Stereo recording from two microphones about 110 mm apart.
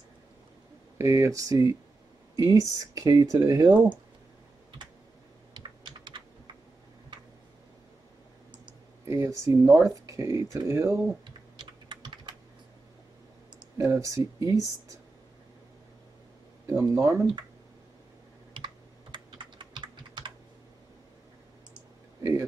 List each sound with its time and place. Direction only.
0.9 s speech: 25° right (ahead or behind)
5.5 s computer keyboard: 45° right (ahead or behind)
9.0 s speech: 25° right (ahead or behind)
11.2 s typing: 45° right (ahead or behind)
13.7 s speech: 30° right (ahead or behind)
16.6 s speech: 25° right (ahead or behind)
19.1 s typing: 45° right (ahead or behind)